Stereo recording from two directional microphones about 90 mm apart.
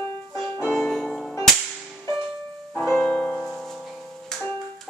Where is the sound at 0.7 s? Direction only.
5° left (ahead or behind).